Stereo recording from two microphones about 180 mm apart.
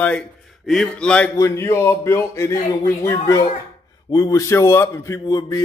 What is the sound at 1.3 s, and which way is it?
A man's voice, 15° left (ahead or behind).